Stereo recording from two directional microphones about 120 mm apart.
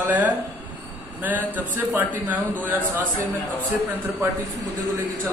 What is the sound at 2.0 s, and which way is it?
Speech, 15° right (ahead or behind).